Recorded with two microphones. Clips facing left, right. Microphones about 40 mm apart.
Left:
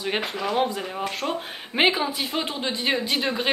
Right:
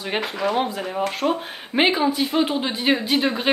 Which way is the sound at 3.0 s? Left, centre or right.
Centre.